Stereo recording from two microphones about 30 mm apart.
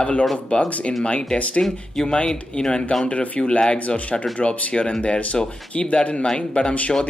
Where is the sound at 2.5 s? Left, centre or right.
Left.